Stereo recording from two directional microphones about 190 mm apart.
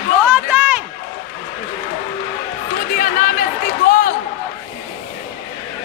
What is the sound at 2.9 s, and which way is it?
Chatter, 45° left (ahead or behind).